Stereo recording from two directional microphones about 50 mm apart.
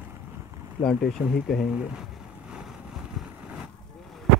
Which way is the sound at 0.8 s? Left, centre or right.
Centre.